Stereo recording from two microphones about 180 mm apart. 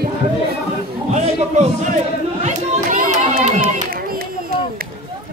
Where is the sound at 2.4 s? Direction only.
45° right (ahead or behind).